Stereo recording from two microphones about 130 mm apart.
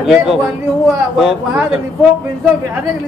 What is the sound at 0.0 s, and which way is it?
Speech, 5° right (ahead or behind).